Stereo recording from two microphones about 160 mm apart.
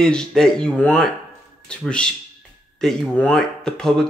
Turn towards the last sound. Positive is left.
turn(degrees=5)  # may be behind; listen again after turning